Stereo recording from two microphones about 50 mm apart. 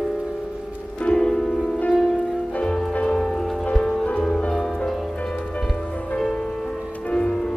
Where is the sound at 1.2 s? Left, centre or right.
Centre.